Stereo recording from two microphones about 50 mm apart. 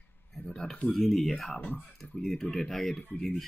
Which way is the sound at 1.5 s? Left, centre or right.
Left.